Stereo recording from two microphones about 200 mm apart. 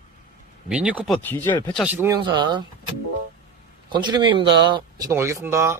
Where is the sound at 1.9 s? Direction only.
10° right (ahead or behind).